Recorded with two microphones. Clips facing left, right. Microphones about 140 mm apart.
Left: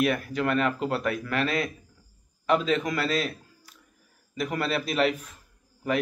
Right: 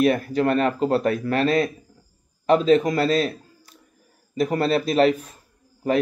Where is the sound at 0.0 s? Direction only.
35° right (ahead or behind).